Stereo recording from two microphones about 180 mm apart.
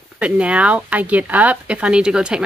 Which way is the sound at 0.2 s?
5° right (ahead or behind).